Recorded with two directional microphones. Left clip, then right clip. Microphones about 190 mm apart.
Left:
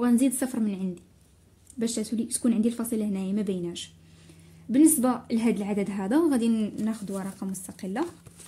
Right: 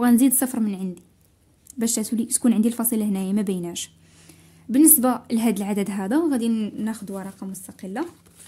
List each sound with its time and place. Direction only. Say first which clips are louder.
0.0 s a woman's voice: right 5 dB; 35° right (ahead or behind)
1.8 s a woman's voice: right 4 dB; 40° right (ahead or behind)
4.6 s a woman's voice: right 3 dB; 25° right (ahead or behind)
7.2 s speech: even; 5° right (ahead or behind)